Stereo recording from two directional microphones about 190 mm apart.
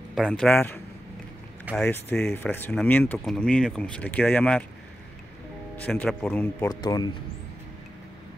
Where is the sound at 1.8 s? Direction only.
5° left (ahead or behind).